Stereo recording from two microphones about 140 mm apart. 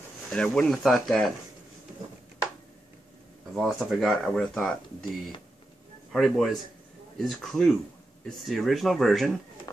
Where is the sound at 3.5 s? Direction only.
Centre (ahead or behind).